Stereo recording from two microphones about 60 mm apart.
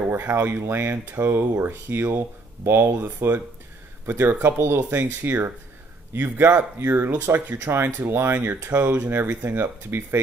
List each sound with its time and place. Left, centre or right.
0.1 s speech: right
9.8 s speech: right